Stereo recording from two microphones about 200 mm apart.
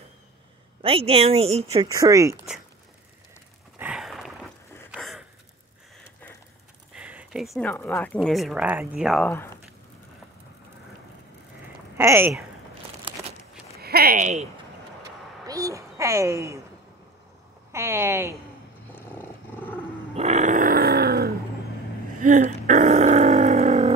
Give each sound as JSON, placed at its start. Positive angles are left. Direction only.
{"t": 0.8, "sound": "speech", "side_deg": -30}
{"t": 1.9, "sound": "speech", "side_deg": -15}
{"t": 3.7, "sound": "a sound", "side_deg": -5}
{"t": 4.9, "sound": "gasp", "side_deg": 0}
{"t": 7.0, "sound": "a sound", "side_deg": -5}
{"t": 7.7, "sound": "speech", "side_deg": 10}
{"t": 12.0, "sound": "speech", "side_deg": -15}
{"t": 13.7, "sound": "speech", "side_deg": -50}
{"t": 15.4, "sound": "speech", "side_deg": -15}
{"t": 17.7, "sound": "speech", "side_deg": -15}
{"t": 18.9, "sound": "dog", "side_deg": 10}
{"t": 20.2, "sound": "grunt", "side_deg": -35}
{"t": 22.2, "sound": "grunt", "side_deg": -40}